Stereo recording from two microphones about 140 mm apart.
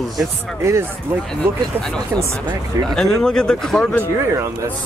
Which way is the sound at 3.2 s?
5° left (ahead or behind).